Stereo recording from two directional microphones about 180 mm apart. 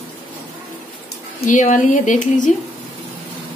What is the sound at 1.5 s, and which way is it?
Speech, 45° left (ahead or behind).